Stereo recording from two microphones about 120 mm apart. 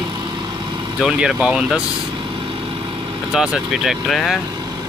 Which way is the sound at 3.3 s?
5° right (ahead or behind).